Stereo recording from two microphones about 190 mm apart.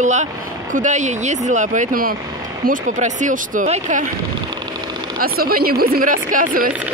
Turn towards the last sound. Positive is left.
turn(degrees=-50)  # may be behind; listen again after turning